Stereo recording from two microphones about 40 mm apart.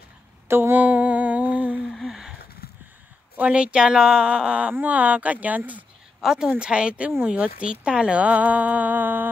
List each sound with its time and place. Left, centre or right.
0.5 s mantra: right
0.7 s music: right
2.0 s a sound: centre
3.3 s a woman's voice: right
6.2 s a woman's voice: centre
6.6 s a woman's voice: right